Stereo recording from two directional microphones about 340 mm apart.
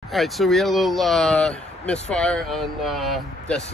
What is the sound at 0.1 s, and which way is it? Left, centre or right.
Speech, centre.